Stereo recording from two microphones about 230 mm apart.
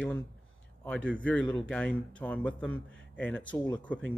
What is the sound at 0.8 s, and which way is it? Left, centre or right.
Speech, centre.